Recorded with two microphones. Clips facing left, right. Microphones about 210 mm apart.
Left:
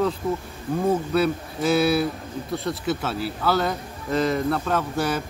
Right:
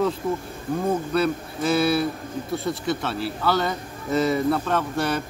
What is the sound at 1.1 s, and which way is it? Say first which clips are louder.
Speech: left 1 dB; centre (ahead or behind).